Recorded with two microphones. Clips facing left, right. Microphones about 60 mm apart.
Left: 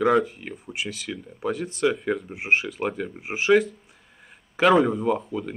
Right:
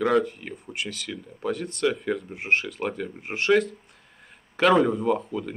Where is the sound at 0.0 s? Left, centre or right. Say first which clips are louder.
Left 2 dB; centre.